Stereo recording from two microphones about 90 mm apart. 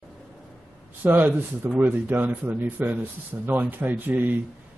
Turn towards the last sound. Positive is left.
turn(degrees=-20)  # may be behind; listen again after turning